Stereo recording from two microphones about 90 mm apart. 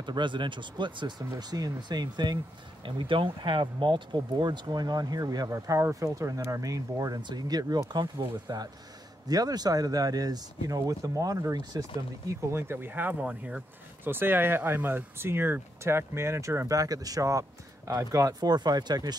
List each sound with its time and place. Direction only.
0.0 s speech: 60° right (ahead or behind); by 5.5 s 45° right (ahead or behind)
5.5 s speech: 30° right (ahead or behind)
7.2 s speech: 55° right (ahead or behind)
12.3 s speech: 30° right (ahead or behind); by 13.6 s 10° right (ahead or behind)
14.0 s speech: 25° right (ahead or behind); by 19.1 s 50° right (ahead or behind)